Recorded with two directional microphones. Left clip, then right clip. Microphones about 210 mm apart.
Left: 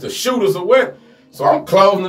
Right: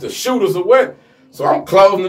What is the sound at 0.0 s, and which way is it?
Speech, 15° right (ahead or behind).